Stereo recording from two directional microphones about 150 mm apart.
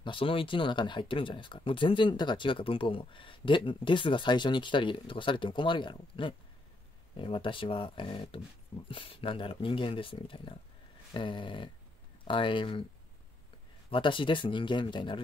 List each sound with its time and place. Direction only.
0.0 s speech: 35° left (ahead or behind)
13.8 s speech: 35° left (ahead or behind)